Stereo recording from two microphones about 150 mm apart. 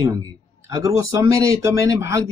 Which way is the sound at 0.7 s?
20° right (ahead or behind).